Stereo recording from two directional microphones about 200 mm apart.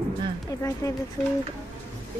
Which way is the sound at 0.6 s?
15° left (ahead or behind).